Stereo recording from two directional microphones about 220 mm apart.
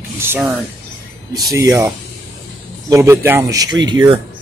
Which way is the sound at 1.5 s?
15° right (ahead or behind).